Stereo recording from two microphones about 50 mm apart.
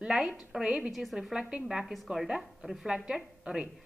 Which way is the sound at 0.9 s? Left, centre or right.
Centre.